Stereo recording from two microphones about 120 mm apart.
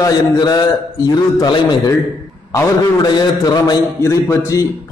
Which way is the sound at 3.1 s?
35° left (ahead or behind).